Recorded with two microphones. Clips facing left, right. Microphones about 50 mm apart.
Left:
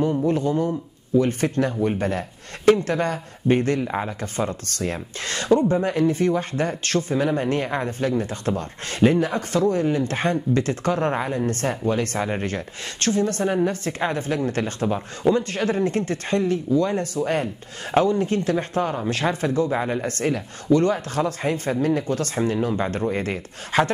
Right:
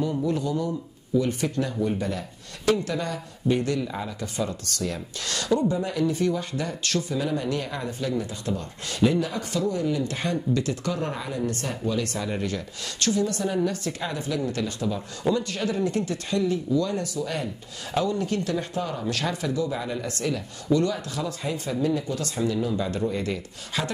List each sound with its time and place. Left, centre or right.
0.2 s speech: left